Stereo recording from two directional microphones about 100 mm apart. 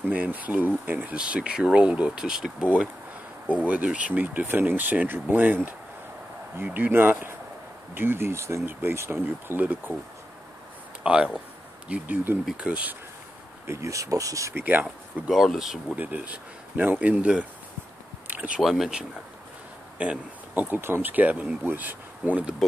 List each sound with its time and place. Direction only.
0.1 s speech: 15° right (ahead or behind)
6.6 s speech: 20° right (ahead or behind)
11.1 s speech: 10° right (ahead or behind)
13.7 s speech: 30° right (ahead or behind)
14.5 s speech: 20° right (ahead or behind)
15.2 s speech: centre (ahead or behind)
16.0 s speech: 15° right (ahead or behind)
18.3 s a sound: 15° right (ahead or behind)
18.6 s speech: centre (ahead or behind)